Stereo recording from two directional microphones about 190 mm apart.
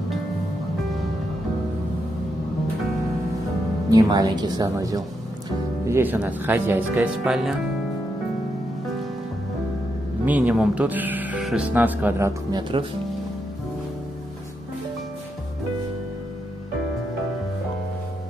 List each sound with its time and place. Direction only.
3.9 s speech: 20° right (ahead or behind); by 7.5 s 5° right (ahead or behind)
10.2 s speech: 10° right (ahead or behind)